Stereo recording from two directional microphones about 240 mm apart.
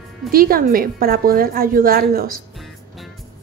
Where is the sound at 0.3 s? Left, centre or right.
Right.